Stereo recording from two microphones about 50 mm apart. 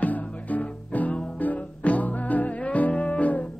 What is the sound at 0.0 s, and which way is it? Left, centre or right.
Music, left.